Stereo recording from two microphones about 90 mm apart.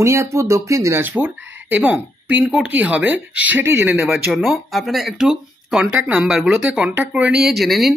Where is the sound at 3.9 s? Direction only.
5° right (ahead or behind).